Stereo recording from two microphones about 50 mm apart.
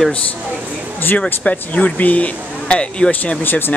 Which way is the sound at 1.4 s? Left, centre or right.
Left.